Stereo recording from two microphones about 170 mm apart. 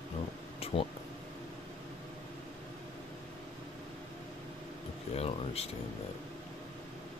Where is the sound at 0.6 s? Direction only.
35° left (ahead or behind).